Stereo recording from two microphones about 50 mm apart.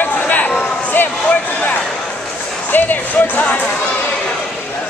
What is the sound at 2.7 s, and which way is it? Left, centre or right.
Speech, left.